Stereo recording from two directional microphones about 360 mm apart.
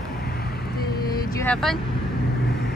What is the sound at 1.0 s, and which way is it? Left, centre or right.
Vehicle, centre.